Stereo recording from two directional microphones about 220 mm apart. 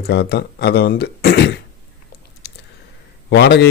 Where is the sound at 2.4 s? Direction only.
50° left (ahead or behind).